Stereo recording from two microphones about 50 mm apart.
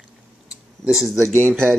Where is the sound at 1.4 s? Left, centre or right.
Right.